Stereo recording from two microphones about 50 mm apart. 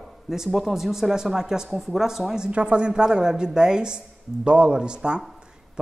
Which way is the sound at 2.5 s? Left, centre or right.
Right.